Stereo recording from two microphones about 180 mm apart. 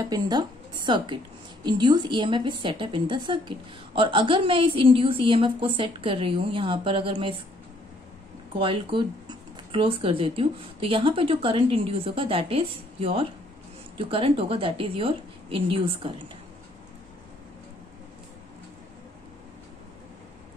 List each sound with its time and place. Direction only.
0.0 s a woman's voice: 20° right (ahead or behind)
8.5 s a woman's voice: 30° right (ahead or behind)